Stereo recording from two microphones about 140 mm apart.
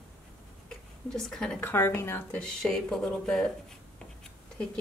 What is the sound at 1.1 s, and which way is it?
Speech, 5° left (ahead or behind).